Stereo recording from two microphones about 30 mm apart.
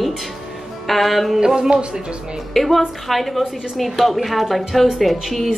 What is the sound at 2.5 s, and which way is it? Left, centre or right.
A woman's voice, centre.